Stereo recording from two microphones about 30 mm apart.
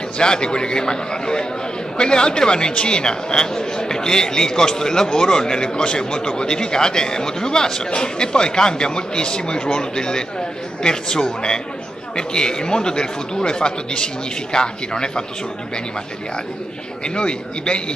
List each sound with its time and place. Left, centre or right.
0.2 s speech: left
17.0 s a man's voice: left